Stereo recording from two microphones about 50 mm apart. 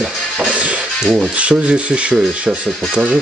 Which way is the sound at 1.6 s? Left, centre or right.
Right.